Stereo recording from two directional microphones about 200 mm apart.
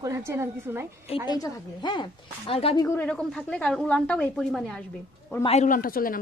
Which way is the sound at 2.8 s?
10° left (ahead or behind).